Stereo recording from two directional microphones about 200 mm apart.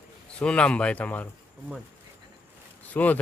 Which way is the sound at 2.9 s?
10° left (ahead or behind).